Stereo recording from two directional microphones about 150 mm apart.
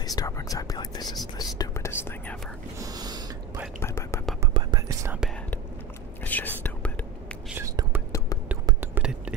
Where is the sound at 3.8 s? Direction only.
20° left (ahead or behind).